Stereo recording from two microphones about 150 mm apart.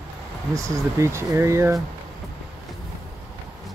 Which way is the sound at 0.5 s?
20° right (ahead or behind).